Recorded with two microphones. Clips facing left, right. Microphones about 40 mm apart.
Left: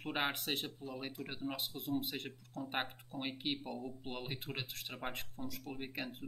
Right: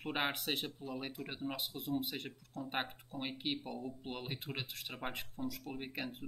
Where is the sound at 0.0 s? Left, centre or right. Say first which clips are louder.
Even; centre.